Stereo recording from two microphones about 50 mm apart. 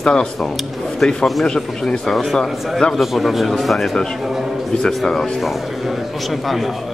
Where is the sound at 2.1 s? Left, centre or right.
Centre.